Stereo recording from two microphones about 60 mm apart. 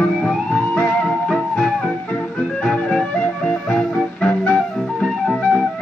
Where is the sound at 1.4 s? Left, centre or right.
Centre.